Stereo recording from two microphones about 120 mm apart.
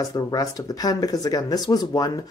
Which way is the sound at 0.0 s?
30° left (ahead or behind).